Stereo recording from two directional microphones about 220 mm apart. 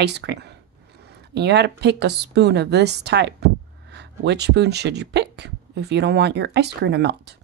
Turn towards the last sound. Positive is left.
turn(degrees=-50)  # may be behind; listen again after turning